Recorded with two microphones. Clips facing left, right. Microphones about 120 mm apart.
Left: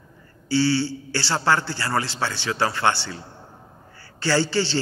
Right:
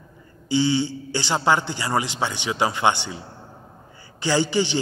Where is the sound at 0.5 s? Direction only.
15° right (ahead or behind).